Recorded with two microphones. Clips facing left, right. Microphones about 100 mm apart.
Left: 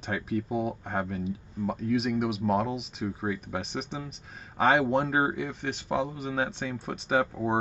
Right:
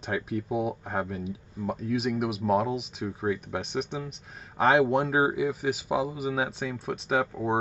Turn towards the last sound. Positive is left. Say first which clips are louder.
# even
turn(degrees=0)  # may be behind; listen again after turning